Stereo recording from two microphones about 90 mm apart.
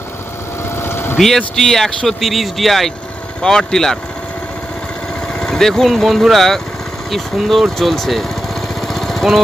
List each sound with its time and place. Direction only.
0.7 s vehicle: 25° left (ahead or behind)
1.1 s speech: 5° left (ahead or behind)
5.3 s speech: 5° left (ahead or behind)
7.1 s lawn mower: centre (ahead or behind)